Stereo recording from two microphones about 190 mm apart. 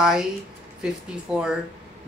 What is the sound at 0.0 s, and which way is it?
Speech, 5° right (ahead or behind).